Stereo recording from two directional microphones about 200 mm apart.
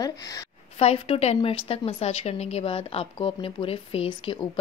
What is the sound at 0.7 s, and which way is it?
A woman's voice, 30° left (ahead or behind).